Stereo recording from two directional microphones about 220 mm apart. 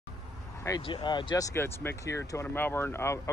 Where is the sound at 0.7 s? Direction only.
20° left (ahead or behind).